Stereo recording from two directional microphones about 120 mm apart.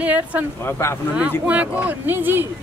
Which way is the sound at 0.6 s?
20° left (ahead or behind).